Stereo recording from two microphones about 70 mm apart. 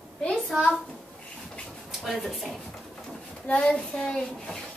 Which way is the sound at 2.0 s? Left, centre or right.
Centre.